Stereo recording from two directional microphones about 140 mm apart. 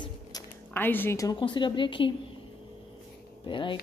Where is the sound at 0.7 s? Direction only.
15° left (ahead or behind).